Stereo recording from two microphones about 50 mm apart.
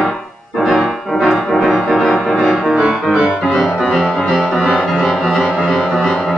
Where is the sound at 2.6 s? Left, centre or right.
Centre.